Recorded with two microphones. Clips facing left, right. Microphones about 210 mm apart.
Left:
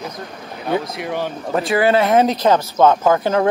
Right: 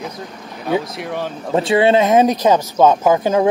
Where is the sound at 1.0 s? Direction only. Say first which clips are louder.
Left 1 dB; centre (ahead or behind).